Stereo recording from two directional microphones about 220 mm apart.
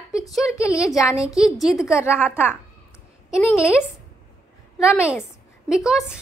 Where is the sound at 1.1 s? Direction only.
5° right (ahead or behind).